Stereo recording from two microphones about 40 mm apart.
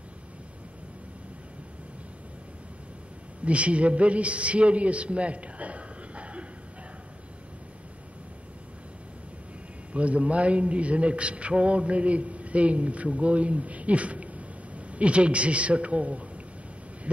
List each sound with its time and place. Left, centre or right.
3.4 s a man's voice: right
9.9 s a man's voice: right